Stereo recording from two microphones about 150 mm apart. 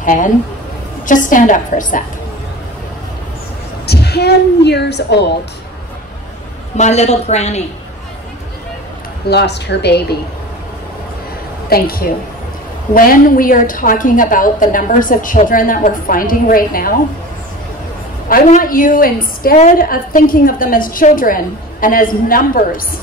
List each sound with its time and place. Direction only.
0.0 s a woman's voice: 60° left (ahead or behind)
3.8 s a woman's voice: 90° left
6.8 s a woman's voice: 45° left (ahead or behind)
9.3 s a woman's voice: 90° left
11.7 s a woman's voice: 85° left
12.9 s a woman's voice: 70° left (ahead or behind)
18.3 s a woman's voice: 70° left (ahead or behind)